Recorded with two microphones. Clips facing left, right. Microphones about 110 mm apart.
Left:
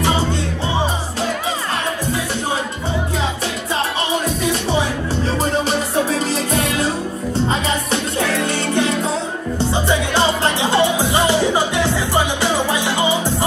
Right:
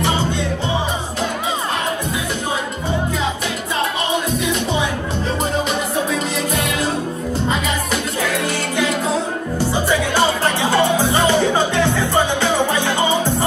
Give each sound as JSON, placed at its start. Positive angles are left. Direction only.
{"t": 5.4, "sound": "music", "side_deg": 35}
{"t": 9.7, "sound": "music", "side_deg": 20}